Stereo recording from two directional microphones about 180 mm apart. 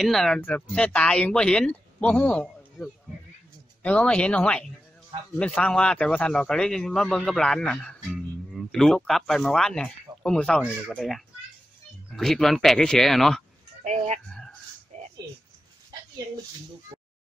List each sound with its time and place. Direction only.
0.0 s speech: centre (ahead or behind)
13.8 s speech: 40° right (ahead or behind)
14.9 s a sound: 40° right (ahead or behind)